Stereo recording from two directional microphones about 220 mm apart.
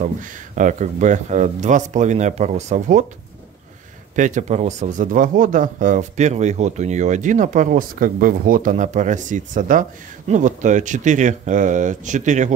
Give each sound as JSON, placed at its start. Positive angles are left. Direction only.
{"t": 0.0, "sound": "speech", "side_deg": -35}
{"t": 4.1, "sound": "speech", "side_deg": -35}